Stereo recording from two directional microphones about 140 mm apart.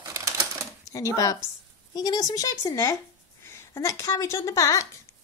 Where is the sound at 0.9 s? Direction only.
25° left (ahead or behind).